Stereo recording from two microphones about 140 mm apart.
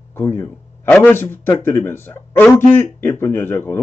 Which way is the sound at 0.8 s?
10° left (ahead or behind).